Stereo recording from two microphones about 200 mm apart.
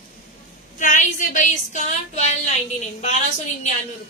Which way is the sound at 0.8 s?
40° left (ahead or behind).